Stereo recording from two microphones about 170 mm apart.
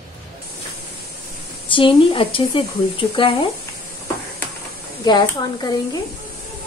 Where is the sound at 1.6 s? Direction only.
30° left (ahead or behind).